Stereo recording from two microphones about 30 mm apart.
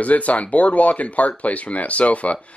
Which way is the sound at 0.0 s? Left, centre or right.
Left.